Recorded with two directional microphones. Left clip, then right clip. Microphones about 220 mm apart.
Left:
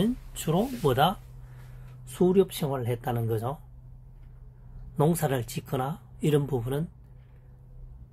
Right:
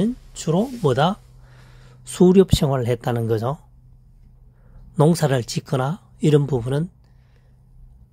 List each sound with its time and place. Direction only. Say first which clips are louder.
0.0 s speech: right 5 dB; 35° right (ahead or behind)
2.1 s speech: right 8 dB; 50° right (ahead or behind)
4.9 s speech: right 8 dB; 40° right (ahead or behind)